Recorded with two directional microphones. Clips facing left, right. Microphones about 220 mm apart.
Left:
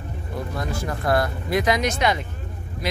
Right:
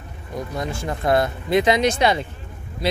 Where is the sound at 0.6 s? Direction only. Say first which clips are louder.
Right 2 dB; 25° right (ahead or behind).